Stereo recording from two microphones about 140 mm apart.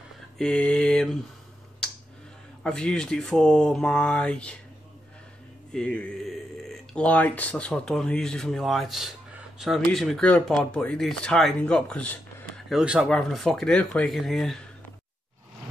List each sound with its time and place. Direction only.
0.4 s speech: 5° left (ahead or behind)
2.6 s speech: 5° left (ahead or behind)
5.7 s speech: 5° left (ahead or behind)
12.6 s speech: 5° right (ahead or behind)